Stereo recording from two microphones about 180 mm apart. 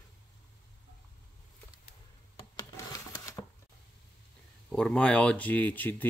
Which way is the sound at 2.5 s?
20° left (ahead or behind).